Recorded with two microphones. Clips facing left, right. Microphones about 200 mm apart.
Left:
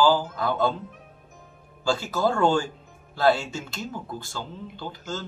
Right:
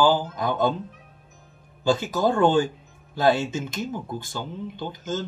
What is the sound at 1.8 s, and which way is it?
A man's voice, 20° right (ahead or behind).